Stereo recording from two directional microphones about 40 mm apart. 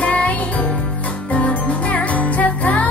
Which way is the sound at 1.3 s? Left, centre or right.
Left.